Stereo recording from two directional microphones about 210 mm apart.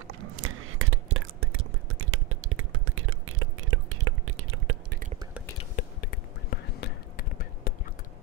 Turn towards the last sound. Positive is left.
turn(degrees=45)  # may be behind; listen again after turning